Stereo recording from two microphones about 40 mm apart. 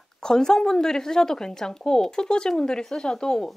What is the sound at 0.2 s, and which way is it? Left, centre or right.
Speech, centre.